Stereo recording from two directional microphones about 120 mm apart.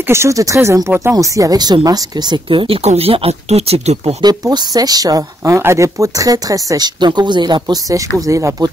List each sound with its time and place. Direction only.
0.1 s speech: 25° right (ahead or behind)
2.7 s speech: 60° right (ahead or behind)
4.2 s speech: 35° right (ahead or behind)